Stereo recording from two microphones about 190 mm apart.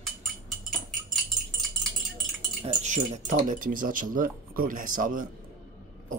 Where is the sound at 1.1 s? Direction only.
Centre (ahead or behind).